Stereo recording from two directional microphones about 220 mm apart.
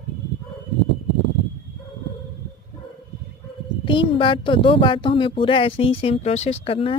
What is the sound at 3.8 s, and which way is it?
Speech, 20° left (ahead or behind).